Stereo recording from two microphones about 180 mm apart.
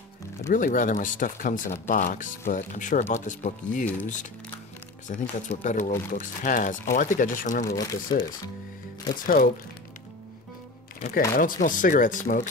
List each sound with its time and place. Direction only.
0.5 s speech: 45° left (ahead or behind)
5.0 s speech: 40° left (ahead or behind)
7.6 s speech: 20° left (ahead or behind)
9.2 s speech: 55° left (ahead or behind)
11.0 s speech: 50° left (ahead or behind)